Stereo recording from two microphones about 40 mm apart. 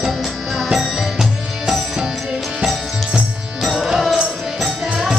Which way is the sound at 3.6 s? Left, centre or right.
Centre.